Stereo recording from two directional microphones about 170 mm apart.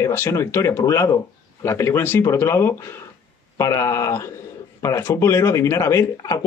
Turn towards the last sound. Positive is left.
turn(degrees=20)  # may be behind; listen again after turning